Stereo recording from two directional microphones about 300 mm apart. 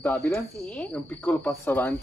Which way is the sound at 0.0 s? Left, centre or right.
Centre.